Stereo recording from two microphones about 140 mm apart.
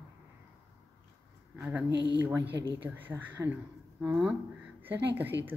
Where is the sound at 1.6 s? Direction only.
15° right (ahead or behind).